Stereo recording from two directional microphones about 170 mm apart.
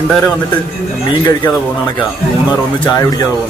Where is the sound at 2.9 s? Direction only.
25° left (ahead or behind).